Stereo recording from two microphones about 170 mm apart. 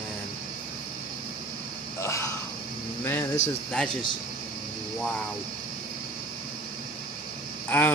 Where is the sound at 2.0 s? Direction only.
15° left (ahead or behind).